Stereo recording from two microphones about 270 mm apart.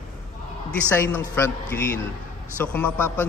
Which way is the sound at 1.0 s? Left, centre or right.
Centre.